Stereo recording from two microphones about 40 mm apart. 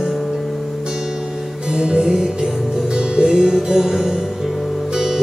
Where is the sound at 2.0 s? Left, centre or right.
Centre.